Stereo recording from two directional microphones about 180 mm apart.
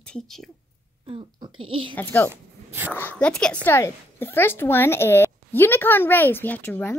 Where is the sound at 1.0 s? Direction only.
30° right (ahead or behind).